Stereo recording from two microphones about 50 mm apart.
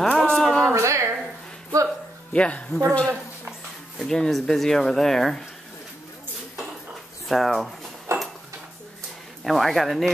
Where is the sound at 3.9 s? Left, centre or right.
Centre.